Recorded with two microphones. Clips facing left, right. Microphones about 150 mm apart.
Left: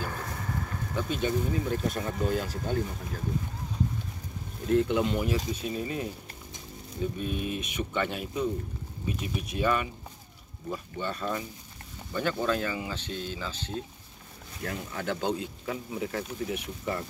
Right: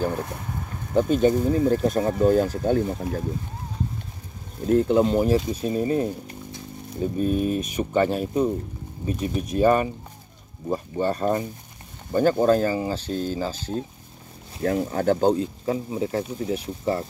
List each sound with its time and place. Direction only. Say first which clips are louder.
0.9 s speech: right 10 dB; 45° right (ahead or behind)
4.6 s speech: right 6 dB; 35° right (ahead or behind)
7.2 s speech: right 10 dB; 40° right (ahead or behind)